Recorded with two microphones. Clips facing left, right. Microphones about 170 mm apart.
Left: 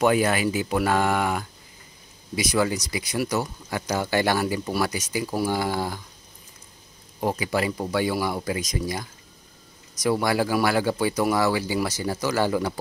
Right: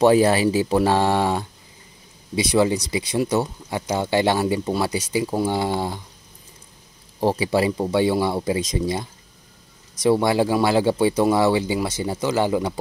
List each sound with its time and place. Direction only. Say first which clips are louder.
0.0 s speech: right 5 dB; 30° right (ahead or behind)
7.2 s speech: right 5 dB; 30° right (ahead or behind)